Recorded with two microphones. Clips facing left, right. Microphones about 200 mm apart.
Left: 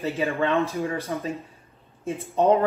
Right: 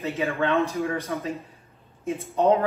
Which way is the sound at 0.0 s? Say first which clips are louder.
Left 1 dB; 30° left (ahead or behind).